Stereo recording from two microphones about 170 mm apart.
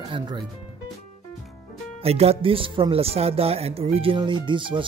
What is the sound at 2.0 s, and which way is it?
Speech, 35° right (ahead or behind).